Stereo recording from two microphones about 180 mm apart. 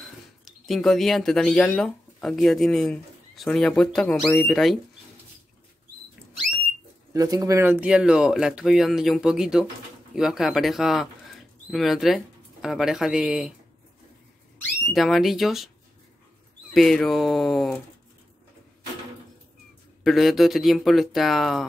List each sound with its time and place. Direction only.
0.0 s speech: centre (ahead or behind)
7.2 s speech: 20° right (ahead or behind); by 13.5 s 5° right (ahead or behind)
14.9 s speech: centre (ahead or behind)
16.7 s speech: centre (ahead or behind)
20.0 s speech: centre (ahead or behind)